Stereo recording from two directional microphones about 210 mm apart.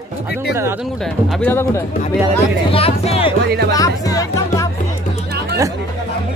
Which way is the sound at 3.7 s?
15° left (ahead or behind).